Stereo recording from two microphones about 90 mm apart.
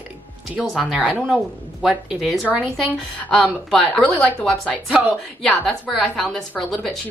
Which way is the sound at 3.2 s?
10° left (ahead or behind).